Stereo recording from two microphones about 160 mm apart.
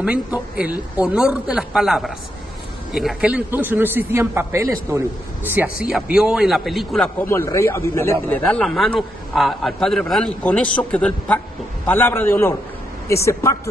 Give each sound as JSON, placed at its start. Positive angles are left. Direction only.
{"t": 0.0, "sound": "a man's voice", "side_deg": -5}
{"t": 7.2, "sound": "a man's voice", "side_deg": 15}
{"t": 8.5, "sound": "a man's voice", "side_deg": 5}